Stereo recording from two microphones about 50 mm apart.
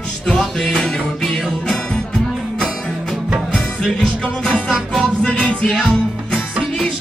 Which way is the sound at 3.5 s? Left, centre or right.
Centre.